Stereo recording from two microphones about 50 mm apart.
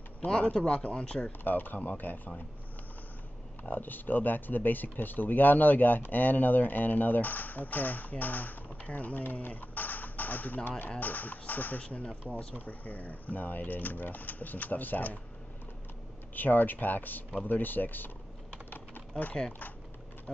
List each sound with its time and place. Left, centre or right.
0.3 s speech: left
1.4 s speech: left
3.6 s speech: left
16.3 s speech: left
18.7 s typing: left